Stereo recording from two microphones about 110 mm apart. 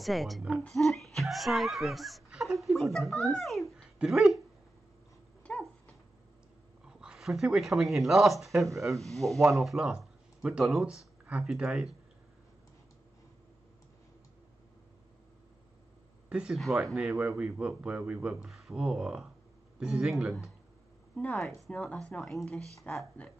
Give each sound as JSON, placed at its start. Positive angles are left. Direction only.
{"t": 0.0, "sound": "a child's voice", "side_deg": 0}
{"t": 3.7, "sound": "a sound", "side_deg": -5}
{"t": 5.4, "sound": "dog", "side_deg": 10}
{"t": 6.9, "sound": "speech", "side_deg": -5}
{"t": 8.5, "sound": "speech", "side_deg": -30}
{"t": 9.0, "sound": "speech", "side_deg": 0}
{"t": 16.3, "sound": "speech", "side_deg": -5}
{"t": 17.1, "sound": "speech", "side_deg": -25}
{"t": 17.4, "sound": "speech", "side_deg": -10}
{"t": 21.2, "sound": "speech", "side_deg": 10}